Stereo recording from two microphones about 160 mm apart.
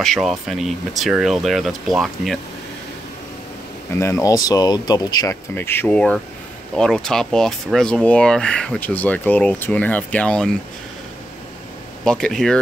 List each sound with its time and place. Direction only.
0.0 s speech: centre (ahead or behind)
3.9 s speech: 15° left (ahead or behind)
12.0 s speech: 5° left (ahead or behind)